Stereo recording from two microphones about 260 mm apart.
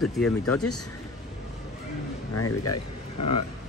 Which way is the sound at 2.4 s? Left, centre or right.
Left.